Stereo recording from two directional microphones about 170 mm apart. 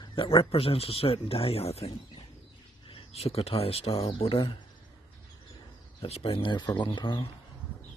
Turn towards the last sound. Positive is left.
turn(degrees=25)  # may be behind; listen again after turning